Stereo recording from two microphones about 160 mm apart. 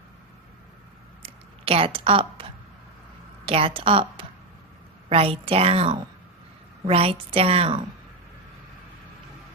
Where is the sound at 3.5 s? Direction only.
35° right (ahead or behind).